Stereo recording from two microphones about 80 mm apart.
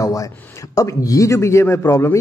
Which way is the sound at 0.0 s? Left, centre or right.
Left.